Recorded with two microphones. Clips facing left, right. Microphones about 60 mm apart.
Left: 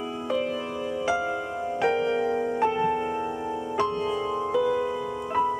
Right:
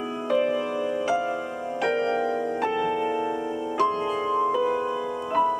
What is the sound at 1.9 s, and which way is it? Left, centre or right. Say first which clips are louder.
Music: even; right.